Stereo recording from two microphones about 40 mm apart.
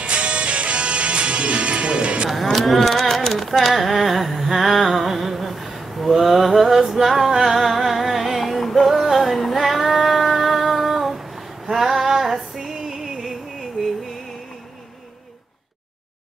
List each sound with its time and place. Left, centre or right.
0.0 s music: right
2.2 s a sound: centre
11.6 s female singing: centre